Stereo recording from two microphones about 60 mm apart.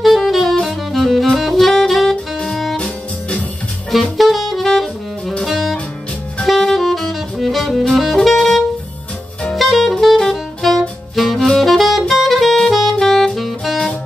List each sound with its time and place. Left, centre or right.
0.0 s saxophone: centre
2.5 s music: centre
2.8 s music: centre
4.2 s saxophone: centre
5.4 s music: centre
6.4 s saxophone: centre
13.0 s music: centre